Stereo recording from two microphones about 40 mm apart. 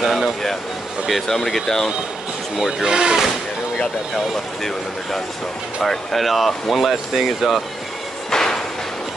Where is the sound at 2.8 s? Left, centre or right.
Centre.